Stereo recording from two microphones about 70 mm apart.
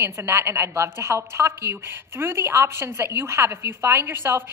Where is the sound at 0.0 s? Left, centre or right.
Right.